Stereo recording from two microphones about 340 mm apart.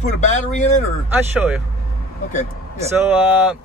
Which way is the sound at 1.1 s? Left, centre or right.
Centre.